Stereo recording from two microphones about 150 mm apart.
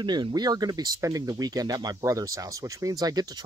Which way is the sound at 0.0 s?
30° right (ahead or behind).